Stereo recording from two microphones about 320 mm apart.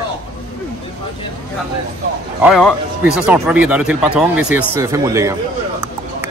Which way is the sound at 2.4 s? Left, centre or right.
Centre.